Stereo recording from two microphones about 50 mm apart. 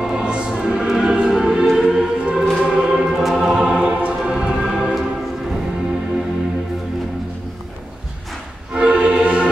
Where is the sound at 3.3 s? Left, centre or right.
Centre.